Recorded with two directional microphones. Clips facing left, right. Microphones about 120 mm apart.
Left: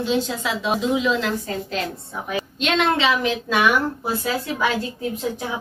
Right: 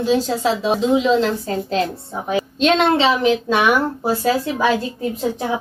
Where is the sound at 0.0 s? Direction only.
40° right (ahead or behind).